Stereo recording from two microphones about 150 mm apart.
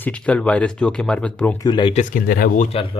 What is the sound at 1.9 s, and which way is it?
Speech, 60° left (ahead or behind).